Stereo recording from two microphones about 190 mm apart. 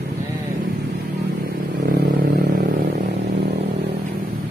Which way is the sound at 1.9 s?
50° right (ahead or behind).